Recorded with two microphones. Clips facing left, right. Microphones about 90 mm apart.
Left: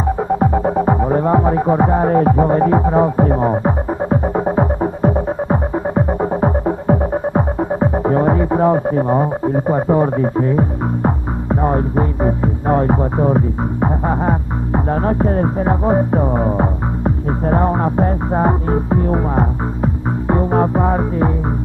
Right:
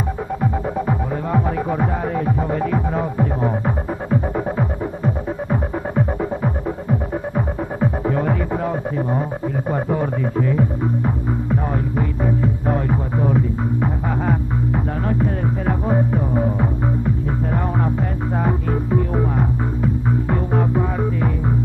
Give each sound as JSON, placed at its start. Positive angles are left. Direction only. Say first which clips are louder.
{"t": 0.4, "sound": "music", "louder": "left 7 dB", "side_deg": 45}
{"t": 3.6, "sound": "throbbing", "louder": "left 6 dB", "side_deg": 35}
{"t": 9.7, "sound": "speech", "louder": "left 6 dB", "side_deg": 30}
{"t": 11.6, "sound": "music", "louder": "left 6 dB", "side_deg": 35}
{"t": 20.7, "sound": "music", "louder": "left 5 dB", "side_deg": 50}